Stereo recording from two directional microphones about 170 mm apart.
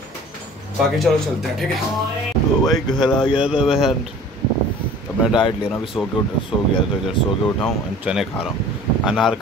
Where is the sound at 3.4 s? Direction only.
5° right (ahead or behind).